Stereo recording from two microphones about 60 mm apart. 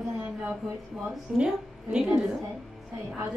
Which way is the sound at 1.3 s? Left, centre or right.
Centre.